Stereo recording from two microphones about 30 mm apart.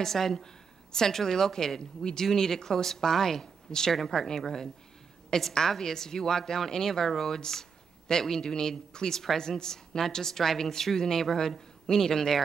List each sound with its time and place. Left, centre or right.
0.0 s a woman's voice: centre